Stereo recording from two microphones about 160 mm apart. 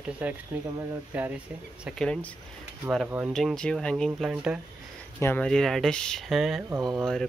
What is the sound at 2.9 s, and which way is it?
Speech, 5° right (ahead or behind).